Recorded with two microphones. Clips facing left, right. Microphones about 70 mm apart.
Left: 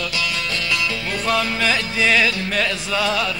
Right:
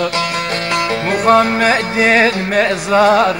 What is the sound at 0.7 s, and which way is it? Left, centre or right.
Music, right.